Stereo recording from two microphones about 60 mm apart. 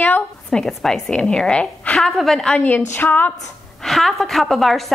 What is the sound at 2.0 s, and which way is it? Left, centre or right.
Speech, centre.